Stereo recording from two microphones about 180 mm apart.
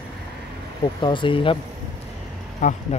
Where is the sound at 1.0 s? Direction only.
25° left (ahead or behind).